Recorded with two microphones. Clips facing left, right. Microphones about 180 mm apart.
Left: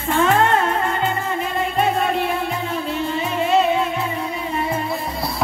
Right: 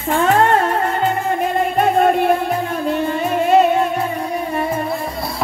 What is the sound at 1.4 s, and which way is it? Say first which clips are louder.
Music: right 4 dB; 50° right (ahead or behind).